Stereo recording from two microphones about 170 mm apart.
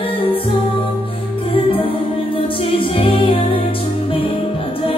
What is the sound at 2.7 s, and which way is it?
Music, 30° left (ahead or behind).